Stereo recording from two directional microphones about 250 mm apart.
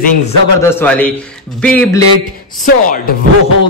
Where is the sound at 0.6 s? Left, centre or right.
Centre.